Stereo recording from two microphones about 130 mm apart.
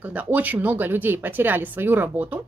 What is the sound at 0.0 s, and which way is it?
Speech, 10° right (ahead or behind).